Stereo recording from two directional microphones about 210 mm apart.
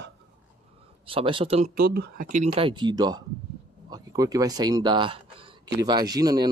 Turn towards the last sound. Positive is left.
turn(degrees=-20)  # may be behind; listen again after turning